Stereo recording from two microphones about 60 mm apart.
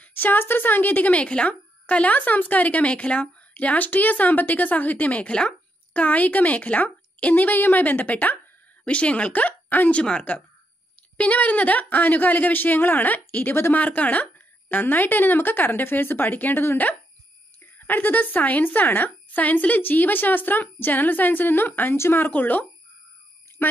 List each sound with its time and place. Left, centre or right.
0.0 s speech: left
22.3 s speech: left
23.6 s speech: left